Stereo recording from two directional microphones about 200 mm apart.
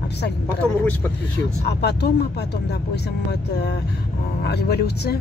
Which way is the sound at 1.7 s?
55° left (ahead or behind).